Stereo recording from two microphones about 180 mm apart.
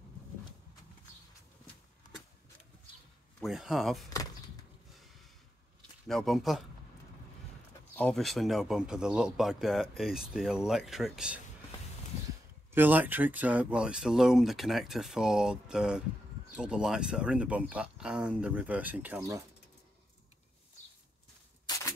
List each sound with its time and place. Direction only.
3.4 s speech: centre (ahead or behind)
6.0 s speech: centre (ahead or behind)
7.9 s speech: 5° left (ahead or behind)
12.7 s speech: 10° right (ahead or behind)
21.7 s cap gun: 20° left (ahead or behind)